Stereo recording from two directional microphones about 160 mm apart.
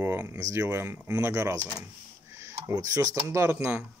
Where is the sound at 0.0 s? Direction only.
15° right (ahead or behind).